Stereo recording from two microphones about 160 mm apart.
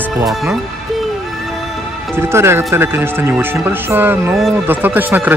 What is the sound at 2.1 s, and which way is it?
Speech, 15° right (ahead or behind).